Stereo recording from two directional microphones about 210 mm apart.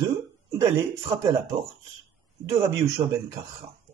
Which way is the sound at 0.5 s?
15° right (ahead or behind).